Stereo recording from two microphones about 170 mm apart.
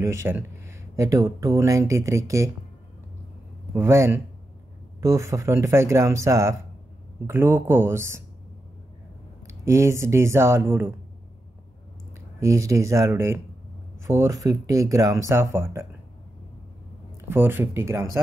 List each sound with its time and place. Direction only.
0.0 s speech: 15° right (ahead or behind)
3.7 s speech: 15° right (ahead or behind)
9.7 s speech: 15° right (ahead or behind)
12.4 s speech: 20° right (ahead or behind)
17.3 s speech: 15° right (ahead or behind)